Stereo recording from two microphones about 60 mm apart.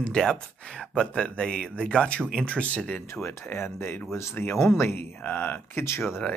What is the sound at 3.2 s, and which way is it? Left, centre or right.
Speech, left.